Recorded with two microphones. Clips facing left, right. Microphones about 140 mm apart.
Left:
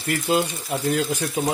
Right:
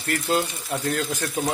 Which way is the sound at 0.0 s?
5° left (ahead or behind).